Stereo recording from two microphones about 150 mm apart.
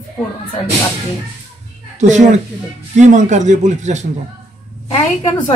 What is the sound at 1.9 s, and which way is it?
A man's voice, 55° right (ahead or behind).